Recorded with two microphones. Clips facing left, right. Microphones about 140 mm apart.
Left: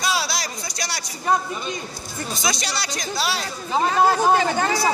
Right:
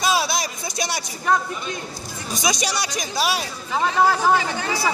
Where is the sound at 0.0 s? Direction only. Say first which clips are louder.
Right 3 dB; 20° right (ahead or behind).